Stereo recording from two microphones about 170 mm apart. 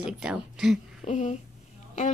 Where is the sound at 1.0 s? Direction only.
45° left (ahead or behind).